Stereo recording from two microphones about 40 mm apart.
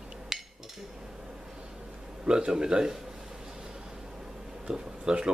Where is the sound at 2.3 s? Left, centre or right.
Centre.